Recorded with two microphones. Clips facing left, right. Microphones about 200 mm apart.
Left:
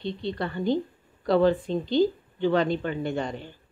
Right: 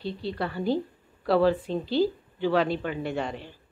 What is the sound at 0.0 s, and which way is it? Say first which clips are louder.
A woman's voice: left 1 dB; 5° right (ahead or behind).